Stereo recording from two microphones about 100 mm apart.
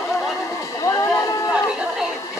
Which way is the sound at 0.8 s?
35° left (ahead or behind).